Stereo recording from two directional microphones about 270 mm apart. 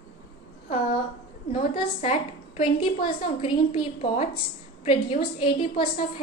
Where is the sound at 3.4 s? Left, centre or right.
Centre.